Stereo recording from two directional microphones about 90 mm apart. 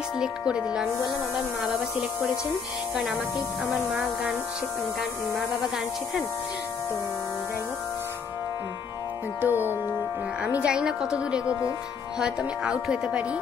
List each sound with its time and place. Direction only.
0.2 s speech: 10° right (ahead or behind)
3.0 s speech: 5° right (ahead or behind)
9.4 s music: 20° right (ahead or behind)
10.4 s speech: 10° right (ahead or behind)